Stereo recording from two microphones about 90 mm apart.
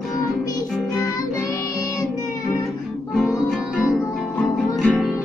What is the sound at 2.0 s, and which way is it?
Music, 35° left (ahead or behind).